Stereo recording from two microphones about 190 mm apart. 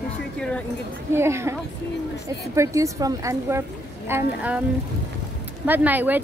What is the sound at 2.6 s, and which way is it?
A woman's voice, 15° right (ahead or behind).